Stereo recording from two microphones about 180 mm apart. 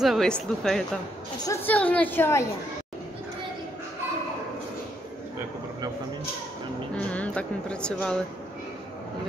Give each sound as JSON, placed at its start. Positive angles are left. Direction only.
{"t": 0.0, "sound": "a woman's voice", "side_deg": 0}
{"t": 1.4, "sound": "a woman's voice", "side_deg": 15}
{"t": 7.0, "sound": "speech", "side_deg": 5}